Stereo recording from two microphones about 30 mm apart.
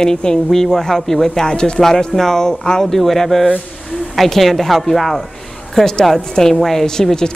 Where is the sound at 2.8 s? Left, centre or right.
Centre.